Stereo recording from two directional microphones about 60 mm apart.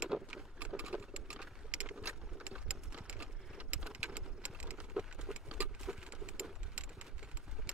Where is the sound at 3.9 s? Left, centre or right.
Centre.